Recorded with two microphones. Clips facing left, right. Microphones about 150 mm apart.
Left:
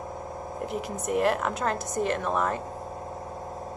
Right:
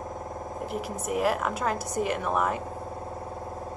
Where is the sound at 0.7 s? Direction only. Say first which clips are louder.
Left 2 dB; 5° right (ahead or behind).